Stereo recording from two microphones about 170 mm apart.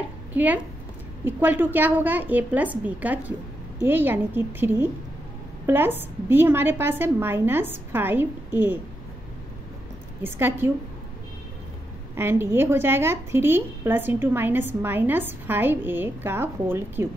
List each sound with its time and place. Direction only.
0.3 s a woman's voice: 10° right (ahead or behind)
10.2 s a woman's voice: 15° right (ahead or behind)
12.2 s a woman's voice: 15° right (ahead or behind)